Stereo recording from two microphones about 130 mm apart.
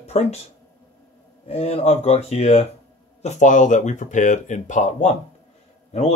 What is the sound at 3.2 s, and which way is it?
Speech, 70° left (ahead or behind).